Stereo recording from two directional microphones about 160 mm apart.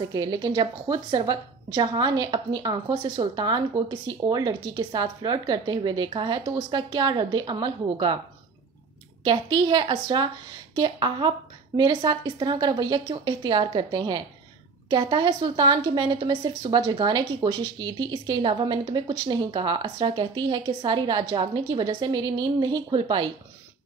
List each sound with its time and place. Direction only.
0.1 s a woman's voice: 25° right (ahead or behind)
9.2 s a woman's voice: 30° right (ahead or behind)